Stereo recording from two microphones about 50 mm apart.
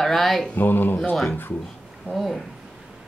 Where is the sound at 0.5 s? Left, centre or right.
Left.